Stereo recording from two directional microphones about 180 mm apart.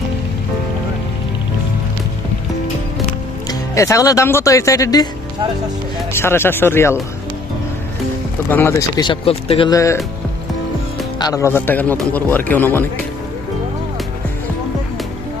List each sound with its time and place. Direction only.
3.4 s speech: 15° left (ahead or behind)
6.1 s speech: 15° left (ahead or behind)
8.5 s speech: 10° left (ahead or behind); by 9.7 s 30° left (ahead or behind)
9.7 s speech: 20° left (ahead or behind)
11.1 s speech: 20° left (ahead or behind)